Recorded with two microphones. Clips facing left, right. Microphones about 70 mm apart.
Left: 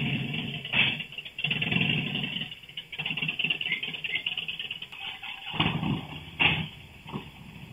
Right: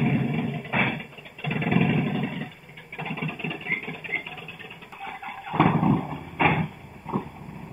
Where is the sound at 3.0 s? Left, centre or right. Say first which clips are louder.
Right 3 dB; right.